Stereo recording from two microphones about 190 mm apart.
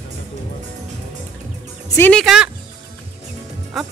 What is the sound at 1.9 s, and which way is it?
Speech, 10° left (ahead or behind).